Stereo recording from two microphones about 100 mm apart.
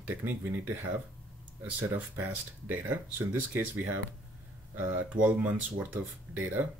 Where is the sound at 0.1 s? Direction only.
20° right (ahead or behind).